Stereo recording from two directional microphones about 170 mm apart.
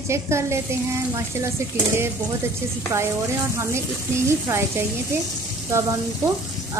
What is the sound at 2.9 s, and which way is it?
Speech, 20° right (ahead or behind).